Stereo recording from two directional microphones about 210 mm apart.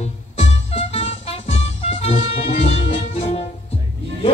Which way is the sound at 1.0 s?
30° left (ahead or behind).